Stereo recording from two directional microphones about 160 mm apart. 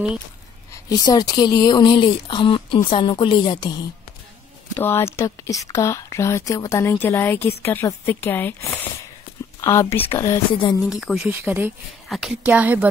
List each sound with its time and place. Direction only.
0.8 s a woman's voice: 25° left (ahead or behind)
4.7 s speech: 15° left (ahead or behind)
10.8 s speech: centre (ahead or behind)
11.2 s a woman's voice: 15° right (ahead or behind)